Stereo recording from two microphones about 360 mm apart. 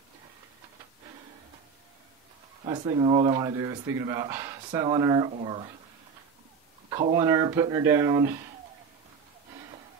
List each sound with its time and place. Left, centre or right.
2.6 s speech: centre
6.9 s speech: centre